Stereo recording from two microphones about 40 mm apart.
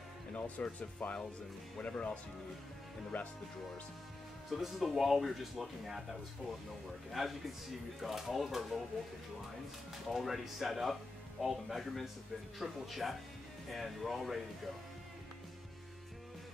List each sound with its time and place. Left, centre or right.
0.3 s speech: left
3.1 s speech: left
4.6 s speech: centre
7.1 s speech: centre
10.0 s speech: centre